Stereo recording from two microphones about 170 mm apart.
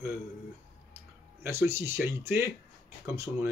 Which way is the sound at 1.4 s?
15° right (ahead or behind).